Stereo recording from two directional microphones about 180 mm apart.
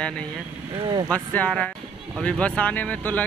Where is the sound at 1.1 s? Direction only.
5° left (ahead or behind).